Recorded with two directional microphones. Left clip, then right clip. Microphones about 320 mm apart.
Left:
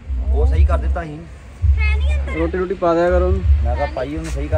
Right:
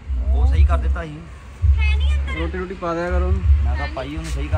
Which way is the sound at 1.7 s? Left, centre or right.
Centre.